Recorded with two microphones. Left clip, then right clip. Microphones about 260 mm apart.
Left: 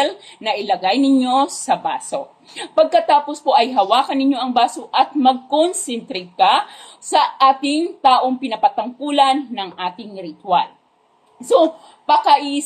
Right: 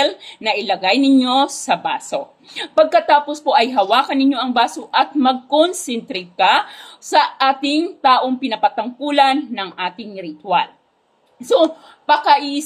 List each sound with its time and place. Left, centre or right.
0.0 s a woman's voice: right
11.4 s a woman's voice: right